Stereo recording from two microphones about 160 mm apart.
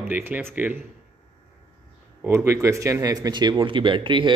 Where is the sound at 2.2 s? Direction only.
15° right (ahead or behind).